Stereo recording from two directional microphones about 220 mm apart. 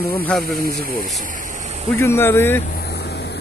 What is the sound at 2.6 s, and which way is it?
Vehicle, 45° left (ahead or behind).